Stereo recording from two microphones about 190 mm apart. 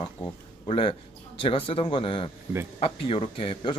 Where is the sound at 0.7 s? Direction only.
30° left (ahead or behind).